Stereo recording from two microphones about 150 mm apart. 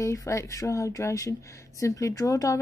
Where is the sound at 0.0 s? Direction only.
20° left (ahead or behind).